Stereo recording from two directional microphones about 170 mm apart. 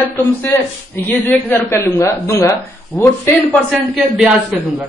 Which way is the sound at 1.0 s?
15° left (ahead or behind).